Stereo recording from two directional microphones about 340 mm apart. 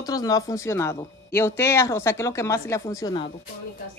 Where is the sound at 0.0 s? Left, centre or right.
Centre.